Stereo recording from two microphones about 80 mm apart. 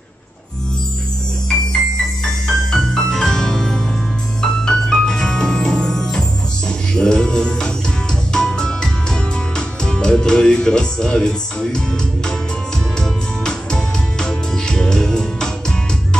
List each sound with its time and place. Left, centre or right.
2.4 s music: centre